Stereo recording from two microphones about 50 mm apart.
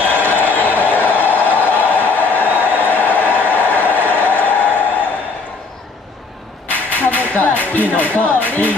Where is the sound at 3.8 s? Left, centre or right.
Right.